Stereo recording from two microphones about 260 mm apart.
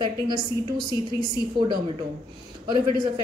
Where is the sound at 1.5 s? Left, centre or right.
Centre.